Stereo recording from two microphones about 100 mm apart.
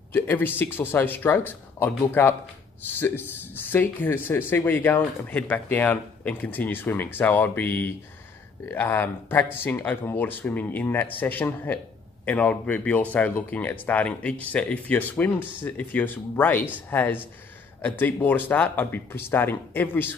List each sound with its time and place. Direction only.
0.1 s speech: 20° left (ahead or behind)